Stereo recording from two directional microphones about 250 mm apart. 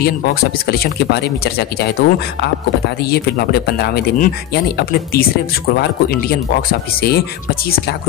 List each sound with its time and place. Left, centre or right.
0.0 s speech: left
6.7 s speech: left